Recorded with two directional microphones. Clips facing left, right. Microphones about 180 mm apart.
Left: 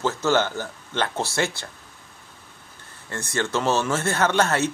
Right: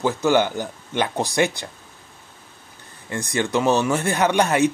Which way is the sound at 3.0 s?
15° right (ahead or behind).